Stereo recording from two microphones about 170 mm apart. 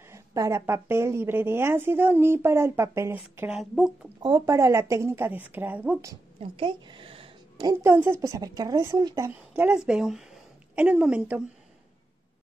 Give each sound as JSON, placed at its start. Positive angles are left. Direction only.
{"t": 0.1, "sound": "a woman's voice", "side_deg": -20}
{"t": 3.5, "sound": "speech", "side_deg": 0}
{"t": 4.2, "sound": "a woman's voice", "side_deg": -20}
{"t": 6.4, "sound": "a woman's voice", "side_deg": -30}